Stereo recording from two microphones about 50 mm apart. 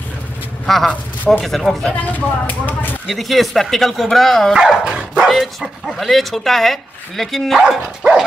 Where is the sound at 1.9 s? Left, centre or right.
Left.